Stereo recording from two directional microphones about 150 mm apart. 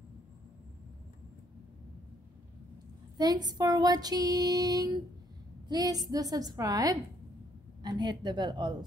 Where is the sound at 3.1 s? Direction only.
25° right (ahead or behind).